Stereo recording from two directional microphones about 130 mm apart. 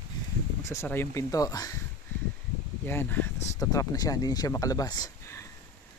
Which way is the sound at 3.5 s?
25° left (ahead or behind).